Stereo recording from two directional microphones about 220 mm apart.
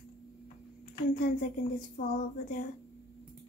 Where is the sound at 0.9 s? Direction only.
35° left (ahead or behind).